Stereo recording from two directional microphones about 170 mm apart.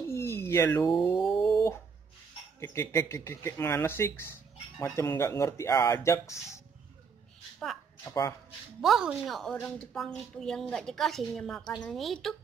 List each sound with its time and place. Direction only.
0.1 s a sound: 15° left (ahead or behind)
2.6 s speech: 15° left (ahead or behind)
7.5 s speech: centre (ahead or behind)
8.0 s speech: 20° left (ahead or behind)
8.8 s a woman's voice: centre (ahead or behind)